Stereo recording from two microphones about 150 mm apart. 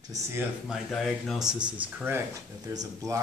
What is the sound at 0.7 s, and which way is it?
Speech, centre (ahead or behind).